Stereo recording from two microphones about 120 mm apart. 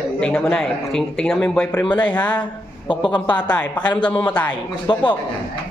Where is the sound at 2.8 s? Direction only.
45° left (ahead or behind).